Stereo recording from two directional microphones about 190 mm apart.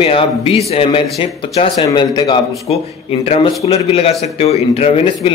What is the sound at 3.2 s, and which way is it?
A man's voice, 30° left (ahead or behind).